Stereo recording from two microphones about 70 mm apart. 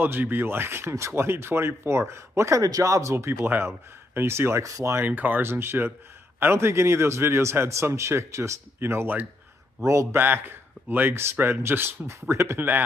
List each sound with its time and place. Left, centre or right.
0.0 s speech: right
4.6 s speech: right
4.9 s speech: right